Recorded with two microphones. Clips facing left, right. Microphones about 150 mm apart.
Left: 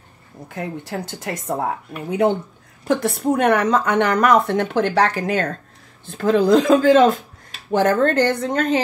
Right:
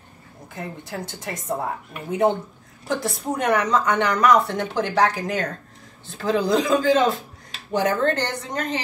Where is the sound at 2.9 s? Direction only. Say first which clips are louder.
Left 6 dB; 60° left (ahead or behind).